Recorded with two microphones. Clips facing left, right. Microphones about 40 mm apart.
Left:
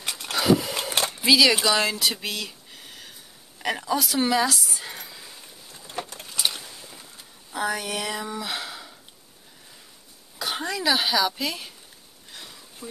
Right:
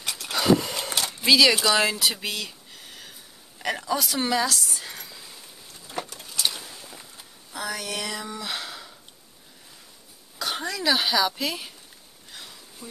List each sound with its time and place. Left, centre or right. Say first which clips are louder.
0.0 s vehicle: even; left
0.3 s vehicle: even; centre
1.1 s speech: even; centre
1.8 s a sound: right 1 dB; centre
5.7 s a sound: even; left
6.3 s vehicle: even; centre
7.5 s speech: left 4 dB; centre
10.4 s speech: left 1 dB; centre
12.3 s a sound: even; centre